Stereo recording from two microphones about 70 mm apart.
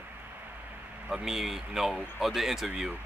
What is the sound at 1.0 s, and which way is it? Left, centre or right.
Speech, centre.